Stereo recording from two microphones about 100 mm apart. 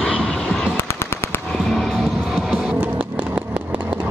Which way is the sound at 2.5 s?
10° right (ahead or behind).